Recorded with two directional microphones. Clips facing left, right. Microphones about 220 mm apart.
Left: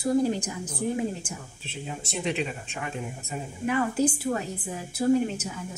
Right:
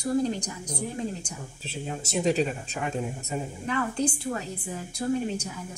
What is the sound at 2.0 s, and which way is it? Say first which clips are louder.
Speech: right 5 dB; 40° right (ahead or behind).